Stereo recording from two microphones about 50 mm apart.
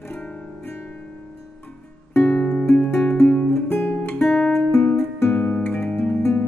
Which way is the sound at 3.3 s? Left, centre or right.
Left.